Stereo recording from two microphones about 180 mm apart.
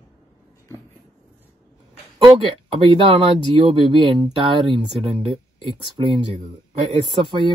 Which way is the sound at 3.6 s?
30° right (ahead or behind).